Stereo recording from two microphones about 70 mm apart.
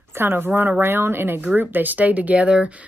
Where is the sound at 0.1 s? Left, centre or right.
Right.